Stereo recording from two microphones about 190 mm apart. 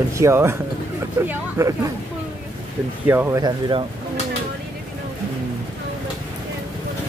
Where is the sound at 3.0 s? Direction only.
10° right (ahead or behind).